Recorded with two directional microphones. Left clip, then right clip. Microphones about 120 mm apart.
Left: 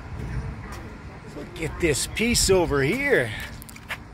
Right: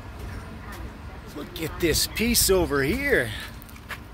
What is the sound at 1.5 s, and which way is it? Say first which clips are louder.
Speech: left 1 dB; 40° right (ahead or behind).